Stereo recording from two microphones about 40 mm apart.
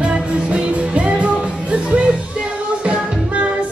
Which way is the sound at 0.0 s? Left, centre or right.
Right.